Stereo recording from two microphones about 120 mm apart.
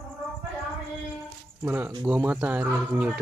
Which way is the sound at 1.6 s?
15° right (ahead or behind).